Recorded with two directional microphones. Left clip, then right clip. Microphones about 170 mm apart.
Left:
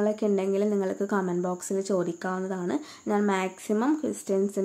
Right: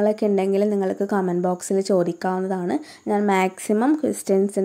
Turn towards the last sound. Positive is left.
turn(degrees=-40)  # may be behind; listen again after turning